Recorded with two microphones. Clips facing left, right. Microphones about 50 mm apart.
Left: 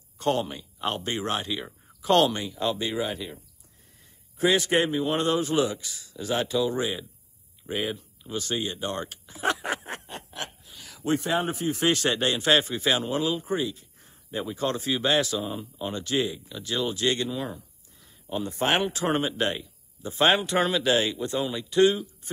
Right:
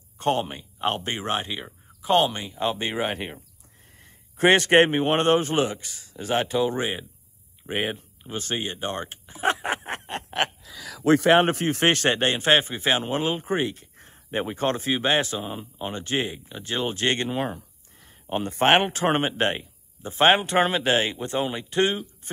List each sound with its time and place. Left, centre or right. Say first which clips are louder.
0.2 s a man's voice: right 2 dB; right
1.6 s a man's voice: even; centre; by 10.2 s right
11.1 s a man's voice: right 8 dB; right